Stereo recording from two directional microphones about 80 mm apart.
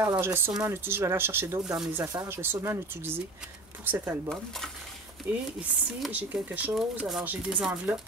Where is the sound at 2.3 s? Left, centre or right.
Right.